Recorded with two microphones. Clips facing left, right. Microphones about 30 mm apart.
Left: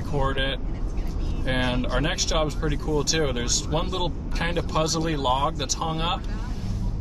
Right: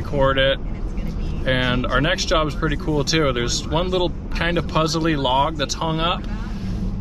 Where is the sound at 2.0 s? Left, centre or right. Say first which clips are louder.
Right 6 dB; right.